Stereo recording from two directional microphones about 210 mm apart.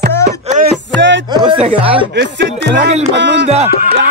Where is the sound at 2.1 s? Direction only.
55° right (ahead or behind).